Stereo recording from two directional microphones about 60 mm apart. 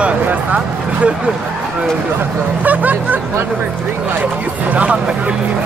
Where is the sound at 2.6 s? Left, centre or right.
Right.